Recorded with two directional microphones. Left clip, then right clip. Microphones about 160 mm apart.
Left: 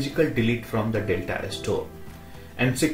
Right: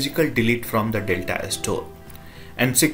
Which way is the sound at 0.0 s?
15° right (ahead or behind).